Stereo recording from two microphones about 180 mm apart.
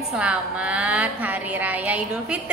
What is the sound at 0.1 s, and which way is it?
A woman's voice, 5° right (ahead or behind).